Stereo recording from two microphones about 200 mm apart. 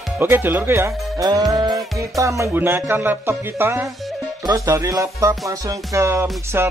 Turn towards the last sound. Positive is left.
turn(degrees=-10)  # may be behind; listen again after turning